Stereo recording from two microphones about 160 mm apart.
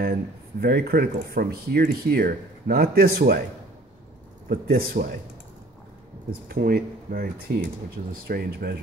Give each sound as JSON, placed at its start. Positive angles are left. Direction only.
{"t": 0.0, "sound": "speech", "side_deg": -70}
{"t": 4.5, "sound": "speech", "side_deg": -65}
{"t": 6.5, "sound": "speech", "side_deg": -70}